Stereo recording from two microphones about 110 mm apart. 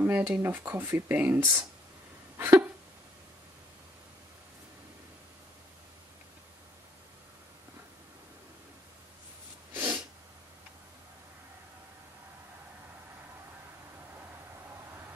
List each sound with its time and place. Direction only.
0.0 s speech: 15° right (ahead or behind)
2.3 s a sound: 25° right (ahead or behind)
9.8 s snort: 20° right (ahead or behind)